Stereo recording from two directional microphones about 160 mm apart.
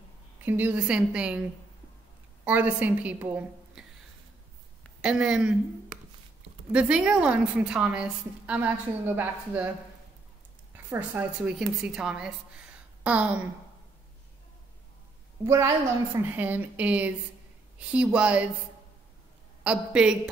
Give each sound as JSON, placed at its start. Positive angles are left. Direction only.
{"t": 0.5, "sound": "a woman's voice", "side_deg": -10}
{"t": 2.4, "sound": "a woman's voice", "side_deg": -10}
{"t": 5.0, "sound": "a woman's voice", "side_deg": -5}
{"t": 6.7, "sound": "a woman's voice", "side_deg": -5}
{"t": 10.9, "sound": "a woman's voice", "side_deg": -10}
{"t": 15.4, "sound": "a woman's voice", "side_deg": -20}
{"t": 19.6, "sound": "a woman's voice", "side_deg": -5}